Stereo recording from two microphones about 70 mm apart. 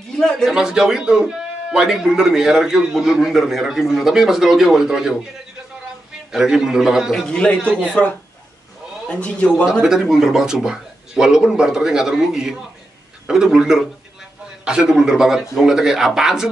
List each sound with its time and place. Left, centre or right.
0.2 s a man's voice: centre
0.5 s a man's voice: centre
6.3 s a man's voice: centre
7.2 s a man's voice: centre
9.7 s a man's voice: centre